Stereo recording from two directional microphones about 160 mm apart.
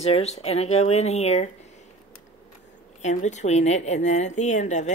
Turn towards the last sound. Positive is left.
turn(degrees=45)  # may be behind; listen again after turning